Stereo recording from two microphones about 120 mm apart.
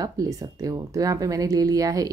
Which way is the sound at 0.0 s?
30° right (ahead or behind).